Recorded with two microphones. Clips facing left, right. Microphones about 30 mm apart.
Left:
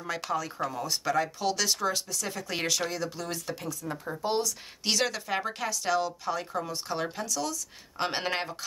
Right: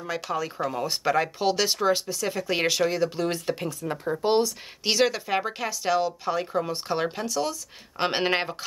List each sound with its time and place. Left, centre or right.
0.0 s speech: centre; by 4.6 s right
4.8 s speech: centre